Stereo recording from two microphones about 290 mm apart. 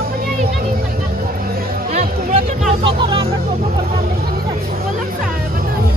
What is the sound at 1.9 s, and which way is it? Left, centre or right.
Music, right.